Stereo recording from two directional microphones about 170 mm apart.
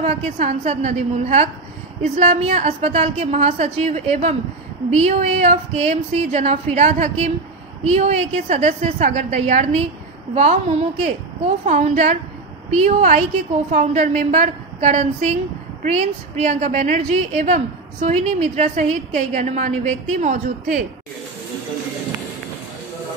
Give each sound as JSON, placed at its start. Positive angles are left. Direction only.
{"t": 0.0, "sound": "a woman's voice", "side_deg": -45}